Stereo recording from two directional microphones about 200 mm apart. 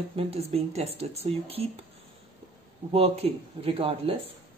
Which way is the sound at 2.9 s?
30° right (ahead or behind).